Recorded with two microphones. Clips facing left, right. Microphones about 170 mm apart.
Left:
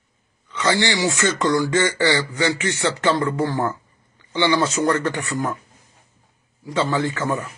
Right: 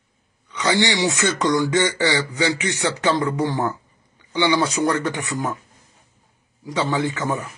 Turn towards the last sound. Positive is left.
turn(degrees=-15)  # may be behind; listen again after turning